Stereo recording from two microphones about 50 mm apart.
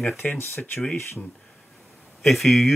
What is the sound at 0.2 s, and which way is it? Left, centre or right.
Speech, left.